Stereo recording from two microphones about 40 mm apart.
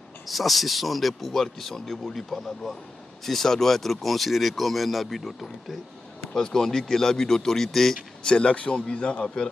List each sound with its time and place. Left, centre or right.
0.3 s speech: centre
8.2 s a man's voice: left